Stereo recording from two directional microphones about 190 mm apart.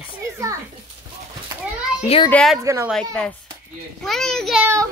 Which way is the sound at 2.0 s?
30° left (ahead or behind).